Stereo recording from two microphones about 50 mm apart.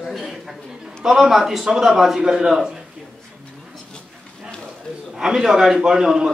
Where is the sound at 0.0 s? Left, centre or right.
Centre.